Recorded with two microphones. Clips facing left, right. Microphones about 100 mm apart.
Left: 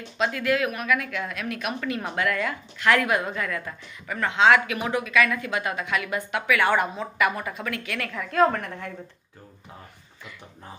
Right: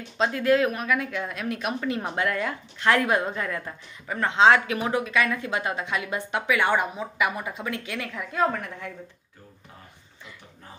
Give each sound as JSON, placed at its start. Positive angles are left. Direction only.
{"t": 0.2, "sound": "a woman's voice", "side_deg": -30}